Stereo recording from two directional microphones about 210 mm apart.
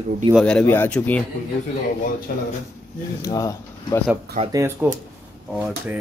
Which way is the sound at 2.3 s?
45° left (ahead or behind).